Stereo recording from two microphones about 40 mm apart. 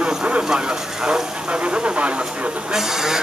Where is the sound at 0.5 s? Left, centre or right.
Right.